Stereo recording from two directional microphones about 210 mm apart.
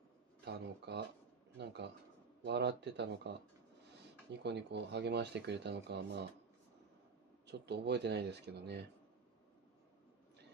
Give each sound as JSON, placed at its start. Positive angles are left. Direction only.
{"t": 0.5, "sound": "speech", "side_deg": -50}
{"t": 4.4, "sound": "speech", "side_deg": -55}
{"t": 7.4, "sound": "speech", "side_deg": -55}